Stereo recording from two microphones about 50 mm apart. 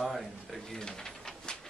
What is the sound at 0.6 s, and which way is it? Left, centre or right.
Pigeon, centre.